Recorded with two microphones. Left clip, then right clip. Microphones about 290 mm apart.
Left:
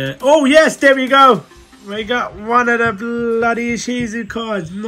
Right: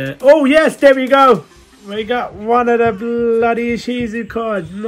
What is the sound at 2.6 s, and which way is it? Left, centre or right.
Speech, right.